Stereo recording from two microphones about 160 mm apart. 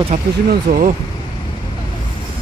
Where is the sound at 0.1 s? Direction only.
50° right (ahead or behind).